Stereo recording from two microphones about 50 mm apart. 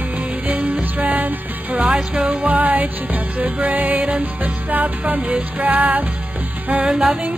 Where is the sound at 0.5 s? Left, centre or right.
Right.